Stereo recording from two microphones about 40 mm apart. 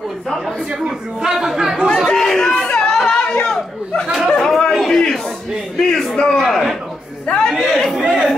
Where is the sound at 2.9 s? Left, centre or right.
Centre.